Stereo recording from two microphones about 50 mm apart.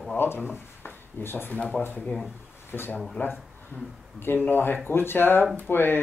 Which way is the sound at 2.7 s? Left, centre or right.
Left.